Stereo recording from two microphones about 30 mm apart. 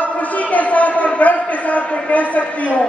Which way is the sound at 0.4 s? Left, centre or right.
Left.